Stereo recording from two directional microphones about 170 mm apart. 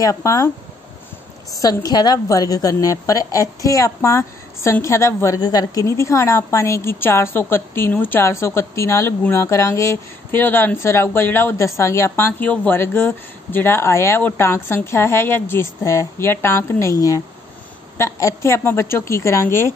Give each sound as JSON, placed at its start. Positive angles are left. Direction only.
{"t": 0.0, "sound": "speech", "side_deg": 20}
{"t": 1.6, "sound": "a woman's voice", "side_deg": 25}